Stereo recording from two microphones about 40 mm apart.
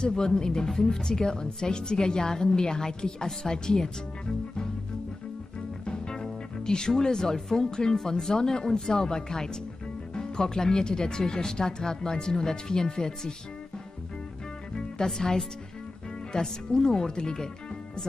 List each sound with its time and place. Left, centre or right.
0.0 s a woman's voice: centre
5.9 s music: centre
6.9 s a woman's voice: centre
15.1 s a woman's voice: centre